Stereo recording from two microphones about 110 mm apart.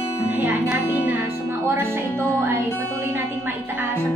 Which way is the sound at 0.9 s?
15° right (ahead or behind).